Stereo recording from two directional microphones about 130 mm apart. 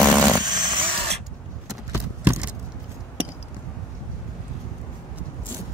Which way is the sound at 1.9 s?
20° right (ahead or behind).